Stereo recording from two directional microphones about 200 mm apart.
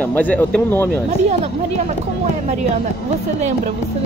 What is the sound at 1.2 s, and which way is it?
Speech, 35° right (ahead or behind).